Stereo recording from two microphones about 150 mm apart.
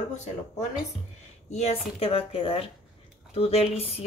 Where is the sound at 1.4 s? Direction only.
45° left (ahead or behind).